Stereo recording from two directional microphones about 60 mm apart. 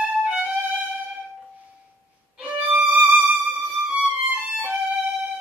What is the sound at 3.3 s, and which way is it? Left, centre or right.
Music, right.